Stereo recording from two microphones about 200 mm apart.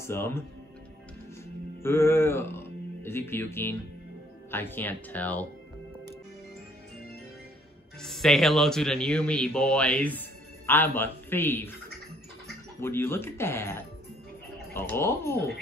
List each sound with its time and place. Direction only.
0.0 s speech: 10° left (ahead or behind)
1.8 s speech: 10° left (ahead or behind)
8.0 s speech: centre (ahead or behind)
12.8 s speech: 10° left (ahead or behind)